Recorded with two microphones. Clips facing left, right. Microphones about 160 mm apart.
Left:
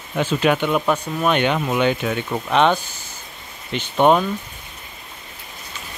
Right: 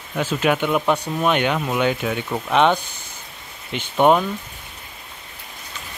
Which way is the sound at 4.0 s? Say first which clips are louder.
Even; 5° right (ahead or behind).